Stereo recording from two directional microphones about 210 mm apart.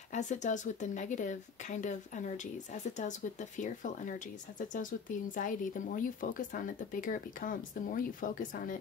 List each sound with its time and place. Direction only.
0.1 s speech: 35° left (ahead or behind)